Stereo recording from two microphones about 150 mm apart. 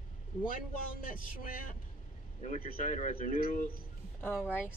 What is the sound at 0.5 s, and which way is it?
Speech, 70° left (ahead or behind).